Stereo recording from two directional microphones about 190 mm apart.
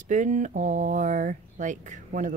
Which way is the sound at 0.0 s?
40° right (ahead or behind).